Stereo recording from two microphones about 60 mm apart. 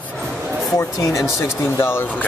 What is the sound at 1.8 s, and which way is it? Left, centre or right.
Speech, left.